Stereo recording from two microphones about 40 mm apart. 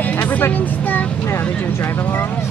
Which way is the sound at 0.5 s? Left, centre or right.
Left.